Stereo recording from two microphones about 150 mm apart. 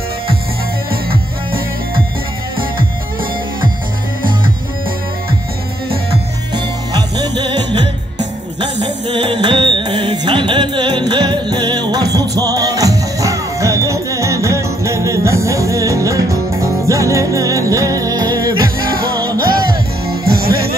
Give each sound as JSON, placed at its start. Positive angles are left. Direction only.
{"t": 1.1, "sound": "music", "side_deg": -75}
{"t": 6.5, "sound": "music", "side_deg": -25}
{"t": 19.3, "sound": "music", "side_deg": -80}
{"t": 20.1, "sound": "music", "side_deg": -90}